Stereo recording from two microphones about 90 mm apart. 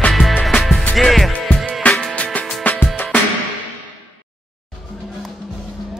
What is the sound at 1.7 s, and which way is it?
Music, 15° left (ahead or behind).